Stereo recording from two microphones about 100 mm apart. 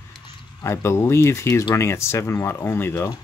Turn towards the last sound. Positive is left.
turn(degrees=25)  # may be behind; listen again after turning